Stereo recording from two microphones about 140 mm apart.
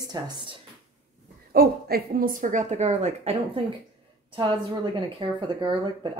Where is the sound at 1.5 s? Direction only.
90° right; by 3.6 s 50° right (ahead or behind).